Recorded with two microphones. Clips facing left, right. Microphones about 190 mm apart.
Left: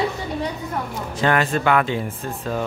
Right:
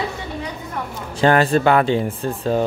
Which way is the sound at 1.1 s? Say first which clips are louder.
Right 5 dB; 35° right (ahead or behind).